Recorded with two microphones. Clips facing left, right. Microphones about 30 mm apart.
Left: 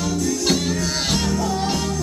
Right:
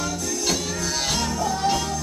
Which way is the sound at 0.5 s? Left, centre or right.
Left.